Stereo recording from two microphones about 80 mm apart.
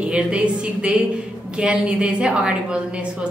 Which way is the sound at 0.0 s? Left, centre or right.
Centre.